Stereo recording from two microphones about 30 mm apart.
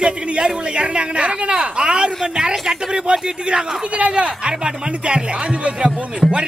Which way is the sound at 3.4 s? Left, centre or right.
Right.